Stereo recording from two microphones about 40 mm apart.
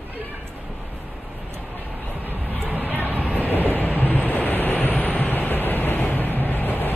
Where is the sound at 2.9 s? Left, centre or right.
Left.